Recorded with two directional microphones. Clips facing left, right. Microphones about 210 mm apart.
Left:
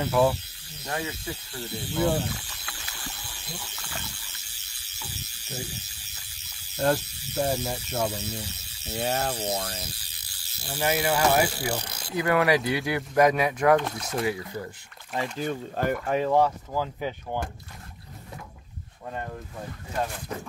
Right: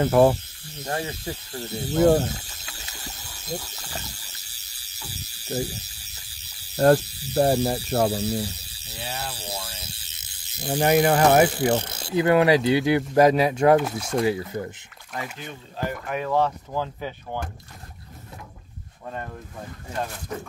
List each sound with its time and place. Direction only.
0.0 s speech: 50° right (ahead or behind)
0.8 s speech: 40° right (ahead or behind)
2.8 s a sound: 20° right (ahead or behind)
3.1 s ratchet: 40° right (ahead or behind)
7.0 s speech: 35° right (ahead or behind)
8.9 s speech: 40° left (ahead or behind)
9.8 s ratchet: 25° right (ahead or behind)
10.7 s speech: 45° right (ahead or behind)
11.8 s speech: 25° right (ahead or behind)
13.7 s speech: 5° right (ahead or behind)
14.2 s speech: 25° right (ahead or behind)
15.8 s speech: 55° left (ahead or behind)
16.1 s speech: 30° left (ahead or behind)
16.3 s speech: 10° left (ahead or behind)